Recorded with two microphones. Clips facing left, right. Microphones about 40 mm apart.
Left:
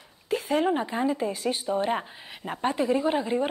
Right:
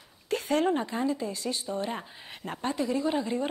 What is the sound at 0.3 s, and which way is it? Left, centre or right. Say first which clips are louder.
Speech: left 2 dB; centre.